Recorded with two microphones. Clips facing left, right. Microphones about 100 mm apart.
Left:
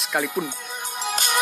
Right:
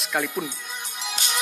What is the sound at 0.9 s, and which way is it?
Music, 45° left (ahead or behind).